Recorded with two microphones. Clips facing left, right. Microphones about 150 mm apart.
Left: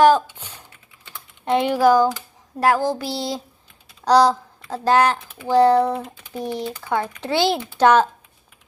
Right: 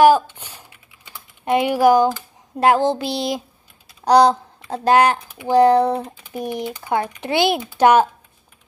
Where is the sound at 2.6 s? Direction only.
25° right (ahead or behind).